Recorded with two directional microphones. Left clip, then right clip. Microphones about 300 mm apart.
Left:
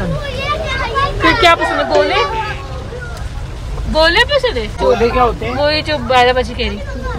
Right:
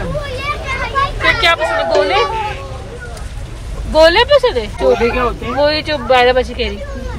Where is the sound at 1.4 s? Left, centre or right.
Centre.